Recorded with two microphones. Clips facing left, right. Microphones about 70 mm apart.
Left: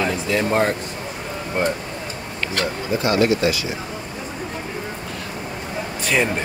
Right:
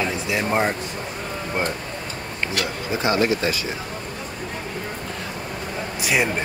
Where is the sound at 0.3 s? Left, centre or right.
Centre.